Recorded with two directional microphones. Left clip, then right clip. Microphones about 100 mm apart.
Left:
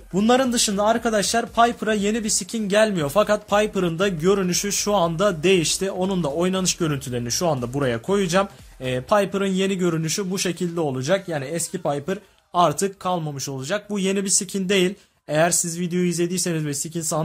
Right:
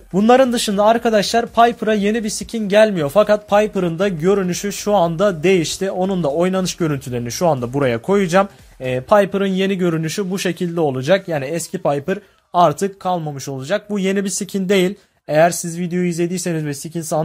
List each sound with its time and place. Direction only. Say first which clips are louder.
0.1 s a man's voice: right 7 dB; 50° right (ahead or behind)
12.5 s a man's voice: right 5 dB; 40° right (ahead or behind)